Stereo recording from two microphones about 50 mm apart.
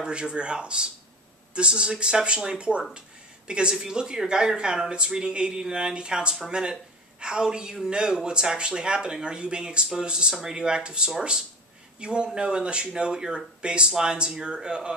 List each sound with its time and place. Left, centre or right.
0.0 s a man's voice: centre